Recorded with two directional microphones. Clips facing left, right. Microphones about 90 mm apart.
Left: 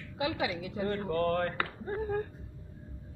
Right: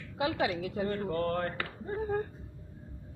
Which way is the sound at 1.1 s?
55° left (ahead or behind).